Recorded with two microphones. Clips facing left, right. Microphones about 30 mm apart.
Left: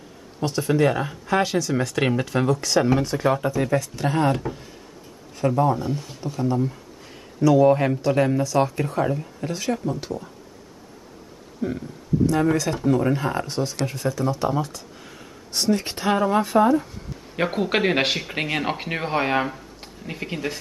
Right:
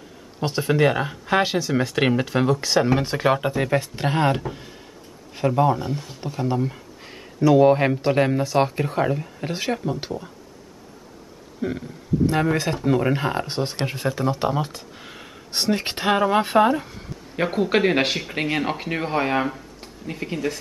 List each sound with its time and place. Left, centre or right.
0.4 s speech: right
3.0 s speech: right
5.6 s speech: right
6.2 s speech: right
11.6 s speech: right
12.8 s speech: right
17.4 s speech: centre